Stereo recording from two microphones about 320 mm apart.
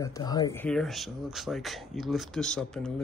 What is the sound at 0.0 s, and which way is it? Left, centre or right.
Speech, centre.